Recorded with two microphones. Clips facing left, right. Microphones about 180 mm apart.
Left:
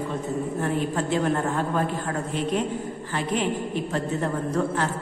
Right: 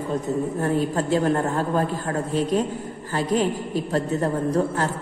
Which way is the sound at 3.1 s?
40° right (ahead or behind).